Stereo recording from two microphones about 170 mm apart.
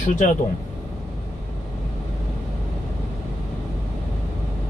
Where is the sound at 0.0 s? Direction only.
45° left (ahead or behind).